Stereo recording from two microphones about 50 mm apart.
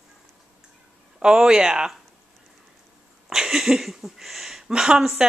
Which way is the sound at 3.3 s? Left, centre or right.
Centre.